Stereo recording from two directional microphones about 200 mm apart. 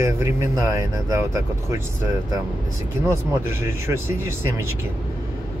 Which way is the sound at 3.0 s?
15° right (ahead or behind).